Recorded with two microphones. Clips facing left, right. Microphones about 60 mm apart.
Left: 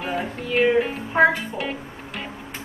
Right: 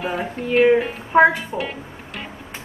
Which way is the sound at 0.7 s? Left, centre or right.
Centre.